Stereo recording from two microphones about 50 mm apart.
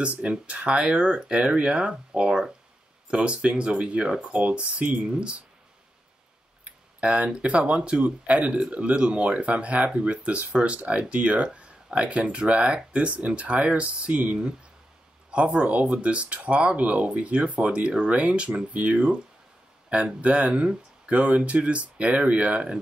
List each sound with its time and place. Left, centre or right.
0.0 s speech: right
6.6 s speech: right